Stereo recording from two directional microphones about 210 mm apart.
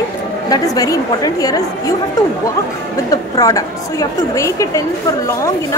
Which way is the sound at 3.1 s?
15° left (ahead or behind).